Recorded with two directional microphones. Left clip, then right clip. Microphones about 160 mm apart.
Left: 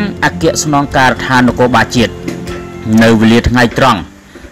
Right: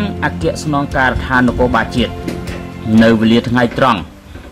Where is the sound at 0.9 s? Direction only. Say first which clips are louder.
Left 4 dB; 25° left (ahead or behind).